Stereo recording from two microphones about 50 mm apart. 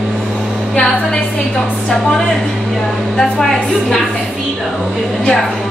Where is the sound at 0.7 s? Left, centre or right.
Centre.